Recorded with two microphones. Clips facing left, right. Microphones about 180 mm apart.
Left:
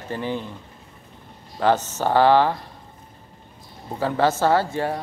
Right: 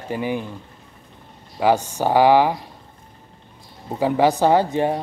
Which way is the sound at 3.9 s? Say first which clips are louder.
Right 3 dB; 15° right (ahead or behind).